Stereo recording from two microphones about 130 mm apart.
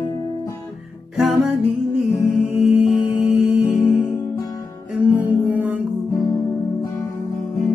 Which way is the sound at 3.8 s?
20° left (ahead or behind).